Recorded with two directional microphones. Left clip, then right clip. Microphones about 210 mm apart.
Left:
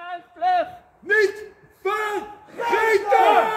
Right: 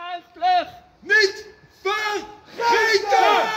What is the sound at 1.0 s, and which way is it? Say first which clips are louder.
A man's voice: right 2 dB; 35° left (ahead or behind).